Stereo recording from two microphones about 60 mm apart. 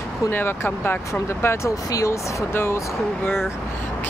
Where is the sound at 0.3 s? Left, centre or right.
Left.